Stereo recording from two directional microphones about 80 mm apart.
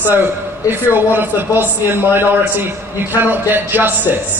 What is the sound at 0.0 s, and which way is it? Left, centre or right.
A man's voice, right.